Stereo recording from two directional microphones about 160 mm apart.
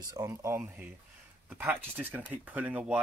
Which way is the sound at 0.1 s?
20° right (ahead or behind).